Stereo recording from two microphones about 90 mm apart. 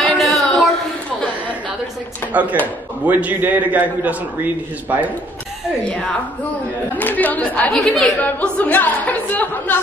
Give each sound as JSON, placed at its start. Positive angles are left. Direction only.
{"t": 0.2, "sound": "a sound", "side_deg": 0}
{"t": 2.3, "sound": "a man's voice", "side_deg": -15}
{"t": 7.0, "sound": "speech", "side_deg": 20}
{"t": 7.7, "sound": "speech", "side_deg": 5}
{"t": 8.0, "sound": "speech", "side_deg": 15}